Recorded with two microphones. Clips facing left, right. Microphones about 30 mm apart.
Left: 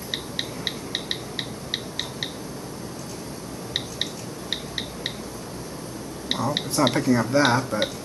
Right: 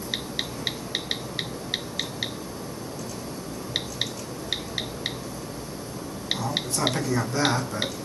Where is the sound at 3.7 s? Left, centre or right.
Centre.